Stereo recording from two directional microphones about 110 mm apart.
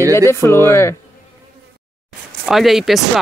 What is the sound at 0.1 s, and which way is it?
Speech, 25° left (ahead or behind).